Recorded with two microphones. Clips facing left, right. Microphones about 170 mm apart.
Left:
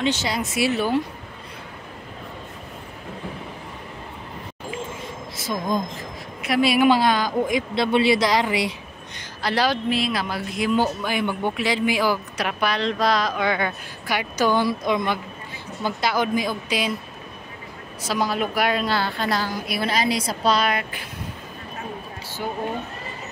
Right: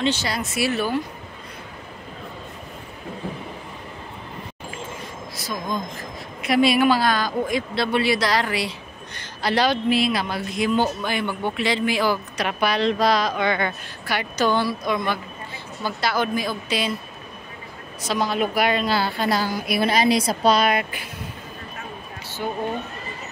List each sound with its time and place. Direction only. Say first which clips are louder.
0.0 s speech: even; 20° left (ahead or behind)
5.3 s a sound: left 3 dB; 25° left (ahead or behind)
6.4 s speech: right 1 dB; 5° left (ahead or behind)
6.9 s speech: left 2 dB; 20° left (ahead or behind)
9.4 s a woman's voice: right 2 dB; centre (ahead or behind)
18.0 s a woman's voice: right 1 dB; 5° left (ahead or behind); by 21.1 s 15° right (ahead or behind)